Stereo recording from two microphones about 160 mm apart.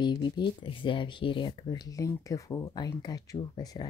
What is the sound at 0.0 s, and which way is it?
Speech, 30° left (ahead or behind).